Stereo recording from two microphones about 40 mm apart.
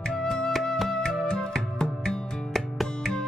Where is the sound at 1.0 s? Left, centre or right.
Centre.